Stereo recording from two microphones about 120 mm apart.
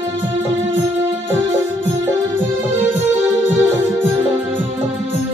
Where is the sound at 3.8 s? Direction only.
15° right (ahead or behind).